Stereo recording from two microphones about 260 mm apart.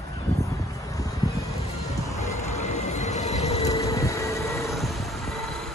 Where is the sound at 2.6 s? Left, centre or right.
Left.